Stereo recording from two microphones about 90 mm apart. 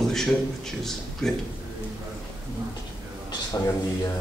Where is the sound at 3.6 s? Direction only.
30° left (ahead or behind).